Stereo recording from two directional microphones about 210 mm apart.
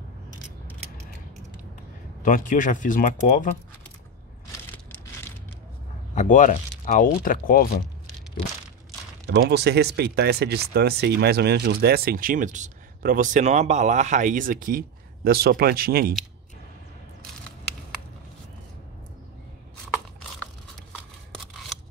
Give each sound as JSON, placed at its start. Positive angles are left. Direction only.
{"t": 2.2, "sound": "speech", "side_deg": 40}
{"t": 6.1, "sound": "speech", "side_deg": 35}
{"t": 9.3, "sound": "speech", "side_deg": -50}